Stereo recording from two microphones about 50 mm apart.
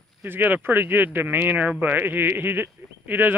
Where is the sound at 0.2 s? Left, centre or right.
Right.